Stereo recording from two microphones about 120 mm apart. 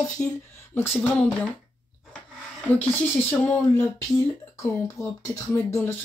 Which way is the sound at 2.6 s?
15° left (ahead or behind).